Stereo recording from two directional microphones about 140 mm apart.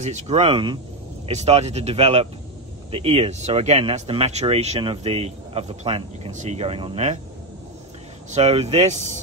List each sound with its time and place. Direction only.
0.0 s speech: 55° right (ahead or behind)
6.3 s speech: 55° right (ahead or behind); by 7.0 s 40° right (ahead or behind)
8.3 s speech: 50° right (ahead or behind)